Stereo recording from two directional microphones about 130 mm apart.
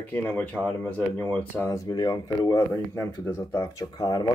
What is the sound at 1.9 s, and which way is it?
Speech, 30° left (ahead or behind).